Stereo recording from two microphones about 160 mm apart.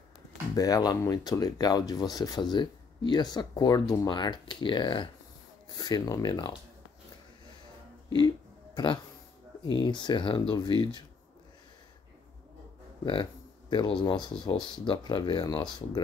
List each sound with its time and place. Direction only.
0.6 s speech: 25° left (ahead or behind)
8.7 s speech: 25° left (ahead or behind)
13.0 s speech: 30° left (ahead or behind)